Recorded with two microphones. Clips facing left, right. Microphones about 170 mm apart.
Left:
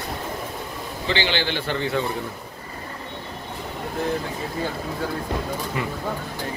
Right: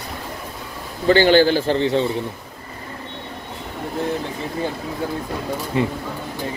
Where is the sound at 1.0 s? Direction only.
45° right (ahead or behind).